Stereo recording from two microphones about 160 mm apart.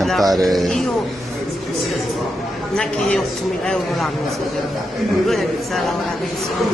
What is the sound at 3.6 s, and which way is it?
Speech, 5° left (ahead or behind).